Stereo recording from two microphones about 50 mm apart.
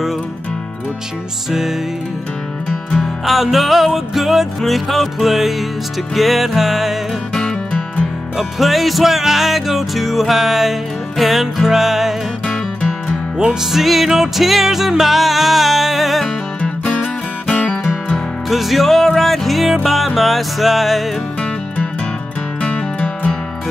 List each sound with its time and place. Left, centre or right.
2.9 s music: centre
7.3 s music: centre
8.4 s music: centre
13.4 s music: centre
16.6 s music: centre
18.1 s music: centre
22.6 s music: left